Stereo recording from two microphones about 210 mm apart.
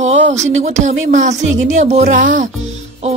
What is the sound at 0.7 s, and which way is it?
Speech, 35° right (ahead or behind).